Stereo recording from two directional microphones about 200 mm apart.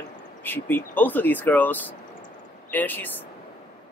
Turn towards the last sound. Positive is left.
turn(degrees=10)  # may be behind; listen again after turning